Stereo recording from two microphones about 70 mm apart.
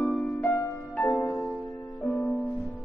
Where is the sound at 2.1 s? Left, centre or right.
Centre.